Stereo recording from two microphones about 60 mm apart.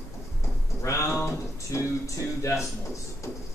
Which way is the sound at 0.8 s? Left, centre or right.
Left.